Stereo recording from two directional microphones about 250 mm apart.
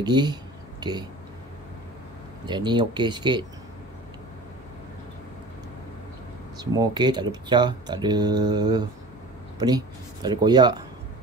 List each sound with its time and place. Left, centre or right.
0.0 s speech: centre
2.4 s speech: centre
6.6 s speech: centre